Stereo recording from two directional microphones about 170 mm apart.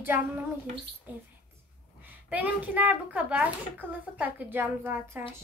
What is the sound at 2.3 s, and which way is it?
Speech, 10° right (ahead or behind).